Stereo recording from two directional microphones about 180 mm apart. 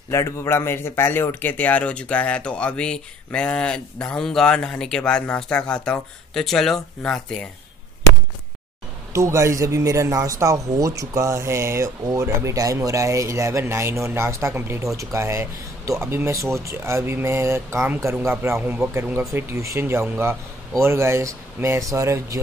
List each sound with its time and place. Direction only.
0.1 s speech: 15° left (ahead or behind)
9.1 s speech: 15° right (ahead or behind)